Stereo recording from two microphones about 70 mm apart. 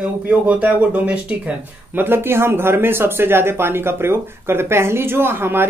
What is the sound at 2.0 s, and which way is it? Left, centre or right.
Speech, right.